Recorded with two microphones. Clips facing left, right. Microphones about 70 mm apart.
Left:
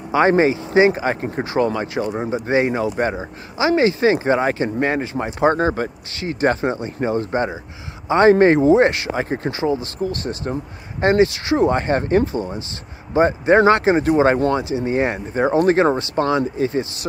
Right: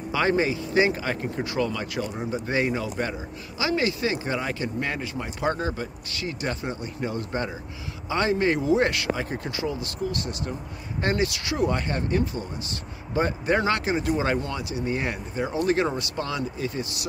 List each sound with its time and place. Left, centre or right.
0.1 s speech: left